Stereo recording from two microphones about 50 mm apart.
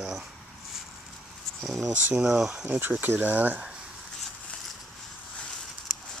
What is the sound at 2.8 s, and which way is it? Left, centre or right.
Speech, right.